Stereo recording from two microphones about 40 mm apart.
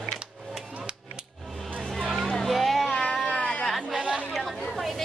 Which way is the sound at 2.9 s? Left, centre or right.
Left.